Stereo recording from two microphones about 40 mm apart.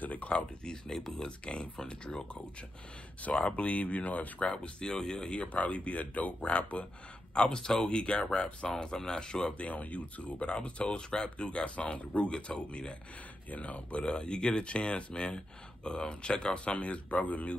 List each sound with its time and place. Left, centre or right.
0.0 s speech: left
0.7 s speech: centre
3.2 s speech: left
4.5 s speech: left
5.4 s speech: left
8.8 s speech: centre
9.6 s speech: left
10.4 s speech: left
13.5 s speech: left